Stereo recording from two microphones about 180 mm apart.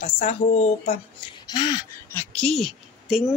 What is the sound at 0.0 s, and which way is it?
A woman's voice, 35° left (ahead or behind).